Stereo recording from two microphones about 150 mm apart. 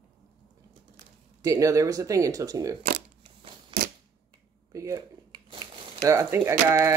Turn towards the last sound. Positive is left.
turn(degrees=-20)  # may be behind; listen again after turning